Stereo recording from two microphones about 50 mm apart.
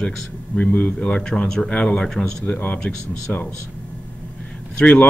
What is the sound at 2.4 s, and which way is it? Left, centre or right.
Speech, left.